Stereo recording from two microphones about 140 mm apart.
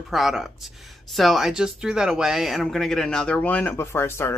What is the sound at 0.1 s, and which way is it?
Speech, centre (ahead or behind).